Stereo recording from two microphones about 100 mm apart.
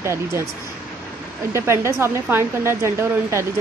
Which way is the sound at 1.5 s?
30° right (ahead or behind).